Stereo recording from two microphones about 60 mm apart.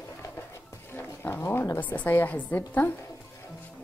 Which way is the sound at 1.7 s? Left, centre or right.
Left.